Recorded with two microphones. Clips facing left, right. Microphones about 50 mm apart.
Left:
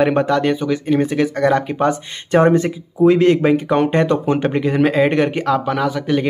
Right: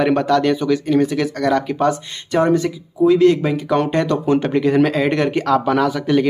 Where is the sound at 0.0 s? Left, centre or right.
Centre.